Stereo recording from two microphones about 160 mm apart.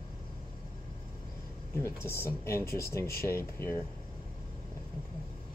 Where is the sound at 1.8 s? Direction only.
15° left (ahead or behind).